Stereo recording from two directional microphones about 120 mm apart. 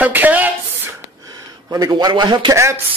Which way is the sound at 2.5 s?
25° right (ahead or behind).